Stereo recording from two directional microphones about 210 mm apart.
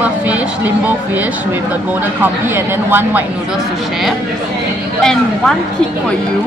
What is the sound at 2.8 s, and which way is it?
Speech, 10° right (ahead or behind).